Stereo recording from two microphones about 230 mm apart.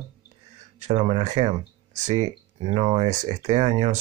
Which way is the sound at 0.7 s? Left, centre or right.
Right.